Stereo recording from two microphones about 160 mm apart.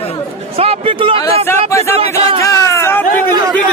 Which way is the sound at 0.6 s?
35° right (ahead or behind).